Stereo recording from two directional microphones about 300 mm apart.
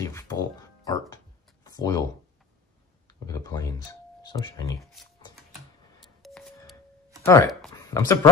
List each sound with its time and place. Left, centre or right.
0.0 s music: centre
3.1 s speech: centre
4.7 s a sound: centre
6.0 s telephone dialing: centre
7.2 s speech: centre